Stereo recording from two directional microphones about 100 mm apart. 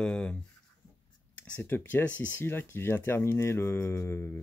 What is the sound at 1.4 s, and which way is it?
Speech, 20° left (ahead or behind).